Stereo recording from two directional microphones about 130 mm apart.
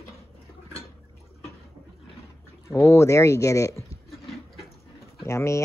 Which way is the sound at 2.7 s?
20° left (ahead or behind).